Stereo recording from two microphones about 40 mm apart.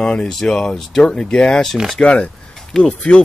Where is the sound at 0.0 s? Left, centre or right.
Left.